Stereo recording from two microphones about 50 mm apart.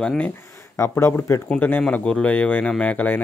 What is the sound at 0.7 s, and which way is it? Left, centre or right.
Speech, left.